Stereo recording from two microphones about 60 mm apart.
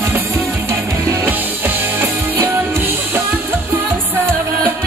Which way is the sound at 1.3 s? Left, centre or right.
Right.